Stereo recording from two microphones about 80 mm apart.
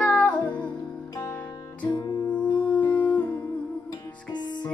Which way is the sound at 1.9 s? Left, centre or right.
Left.